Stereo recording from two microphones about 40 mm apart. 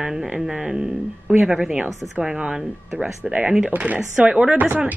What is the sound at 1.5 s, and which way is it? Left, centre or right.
Speech, right.